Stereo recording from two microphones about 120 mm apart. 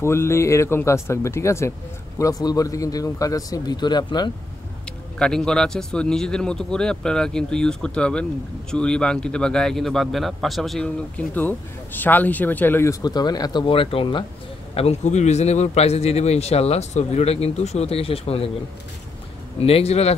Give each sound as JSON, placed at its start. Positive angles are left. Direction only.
{"t": 0.0, "sound": "speech", "side_deg": 20}
{"t": 5.2, "sound": "a man's voice", "side_deg": 5}
{"t": 13.0, "sound": "speech", "side_deg": 35}
{"t": 14.7, "sound": "a man's voice", "side_deg": 60}
{"t": 19.6, "sound": "a man's voice", "side_deg": 55}